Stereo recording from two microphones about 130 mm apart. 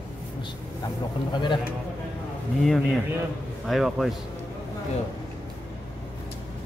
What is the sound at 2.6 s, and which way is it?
A man's voice, centre (ahead or behind).